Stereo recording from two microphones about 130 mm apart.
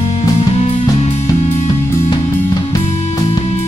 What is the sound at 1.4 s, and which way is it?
Music, 20° left (ahead or behind).